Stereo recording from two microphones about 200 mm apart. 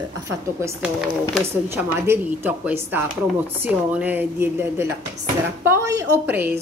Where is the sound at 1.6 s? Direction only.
10° right (ahead or behind).